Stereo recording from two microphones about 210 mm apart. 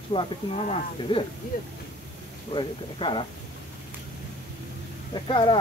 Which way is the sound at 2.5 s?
25° left (ahead or behind).